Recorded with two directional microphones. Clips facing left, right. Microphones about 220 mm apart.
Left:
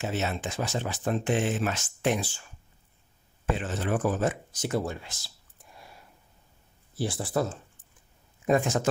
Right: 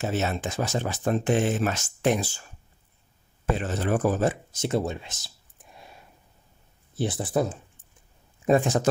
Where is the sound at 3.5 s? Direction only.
40° right (ahead or behind); by 7.5 s 20° right (ahead or behind).